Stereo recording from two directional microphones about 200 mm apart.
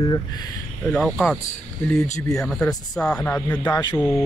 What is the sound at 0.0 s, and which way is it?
Speech, 20° left (ahead or behind).